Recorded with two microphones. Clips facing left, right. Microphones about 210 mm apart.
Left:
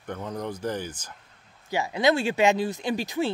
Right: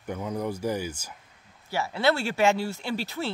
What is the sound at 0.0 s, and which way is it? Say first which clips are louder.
Speech: right 2 dB; 10° right (ahead or behind).